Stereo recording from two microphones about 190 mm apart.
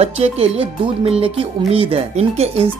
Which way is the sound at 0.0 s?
35° right (ahead or behind).